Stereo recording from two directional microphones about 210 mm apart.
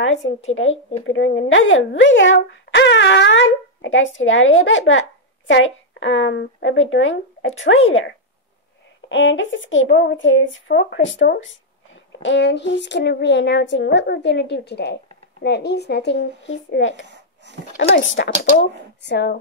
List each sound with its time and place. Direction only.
0.0 s speech: 60° left (ahead or behind)
9.1 s speech: 60° left (ahead or behind)
17.0 s a sound: 55° right (ahead or behind)
17.9 s speech: 60° left (ahead or behind)